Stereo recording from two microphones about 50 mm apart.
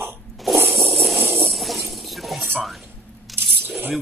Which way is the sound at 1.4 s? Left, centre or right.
Centre.